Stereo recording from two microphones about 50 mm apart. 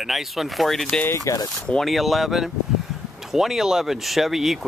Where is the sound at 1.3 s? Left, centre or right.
Left.